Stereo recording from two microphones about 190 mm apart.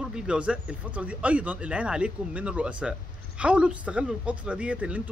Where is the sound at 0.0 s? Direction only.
5° right (ahead or behind).